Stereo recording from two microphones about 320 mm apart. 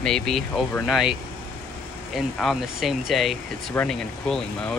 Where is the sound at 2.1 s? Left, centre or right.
Centre.